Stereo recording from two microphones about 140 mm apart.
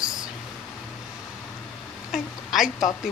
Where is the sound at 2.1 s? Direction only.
Centre (ahead or behind).